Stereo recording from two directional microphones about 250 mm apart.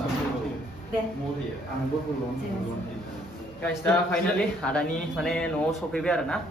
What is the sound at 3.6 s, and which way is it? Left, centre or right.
Speech, centre.